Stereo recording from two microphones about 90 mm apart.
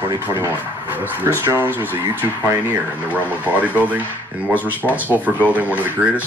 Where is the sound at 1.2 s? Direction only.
25° right (ahead or behind).